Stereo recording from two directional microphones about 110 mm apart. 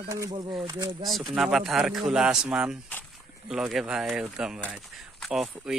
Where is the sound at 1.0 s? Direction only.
Centre (ahead or behind).